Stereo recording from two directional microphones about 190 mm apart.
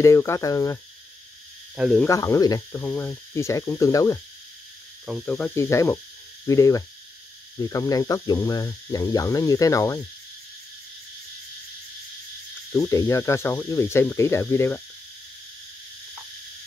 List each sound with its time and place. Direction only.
0.0 s speech: 15° left (ahead or behind)
1.8 s speech: centre (ahead or behind)
2.0 s speech: 15° left (ahead or behind)
5.0 s speech: centre (ahead or behind)
12.7 s speech: 15° left (ahead or behind)